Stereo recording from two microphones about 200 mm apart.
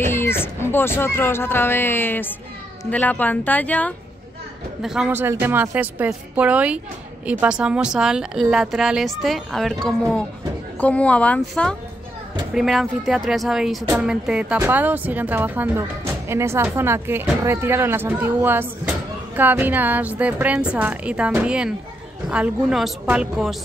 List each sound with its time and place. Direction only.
0.0 s speech: 10° left (ahead or behind)
4.8 s a woman's voice: 5° right (ahead or behind)